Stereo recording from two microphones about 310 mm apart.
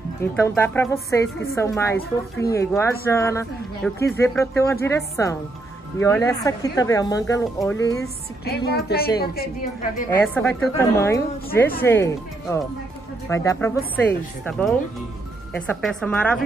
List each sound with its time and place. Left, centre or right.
0.2 s a woman's voice: centre
8.5 s a woman's voice: left
10.2 s a woman's voice: centre
15.5 s speech: centre